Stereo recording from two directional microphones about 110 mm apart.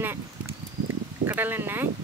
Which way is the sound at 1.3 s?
20° right (ahead or behind).